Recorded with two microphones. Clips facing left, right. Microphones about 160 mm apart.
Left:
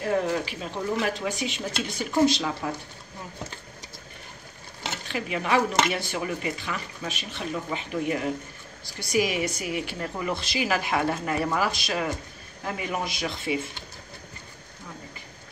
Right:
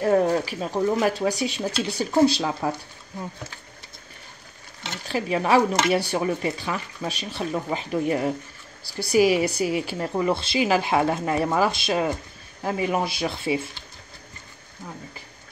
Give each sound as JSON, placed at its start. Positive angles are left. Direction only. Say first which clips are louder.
{"t": 0.0, "sound": "speech", "louder": "right 6 dB", "side_deg": -45}
{"t": 5.0, "sound": "a woman's voice", "louder": "right 7 dB", "side_deg": -35}